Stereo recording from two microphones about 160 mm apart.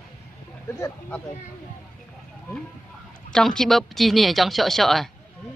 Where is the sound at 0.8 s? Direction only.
10° left (ahead or behind).